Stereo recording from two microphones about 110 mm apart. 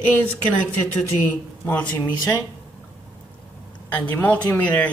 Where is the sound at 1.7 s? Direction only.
15° left (ahead or behind).